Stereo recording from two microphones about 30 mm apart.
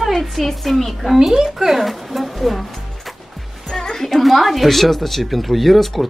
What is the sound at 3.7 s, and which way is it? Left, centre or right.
Music, centre.